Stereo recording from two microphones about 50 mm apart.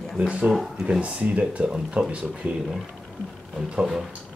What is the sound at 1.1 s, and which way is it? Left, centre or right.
Speech, right.